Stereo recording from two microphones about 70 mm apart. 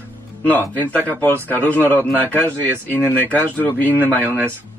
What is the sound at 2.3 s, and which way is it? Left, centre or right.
A man's voice, right.